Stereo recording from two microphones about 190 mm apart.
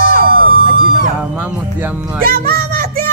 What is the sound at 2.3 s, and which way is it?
Child singing, 50° right (ahead or behind).